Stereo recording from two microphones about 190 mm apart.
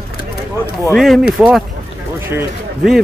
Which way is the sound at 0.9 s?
Centre (ahead or behind).